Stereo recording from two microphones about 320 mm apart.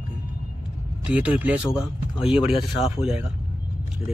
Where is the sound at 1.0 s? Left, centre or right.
Centre.